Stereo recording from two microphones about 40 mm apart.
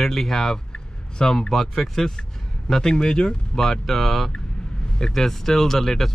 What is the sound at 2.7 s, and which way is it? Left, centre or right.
Speech, centre.